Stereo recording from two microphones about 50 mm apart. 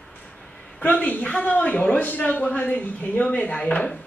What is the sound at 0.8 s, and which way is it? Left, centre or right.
A woman's voice, left.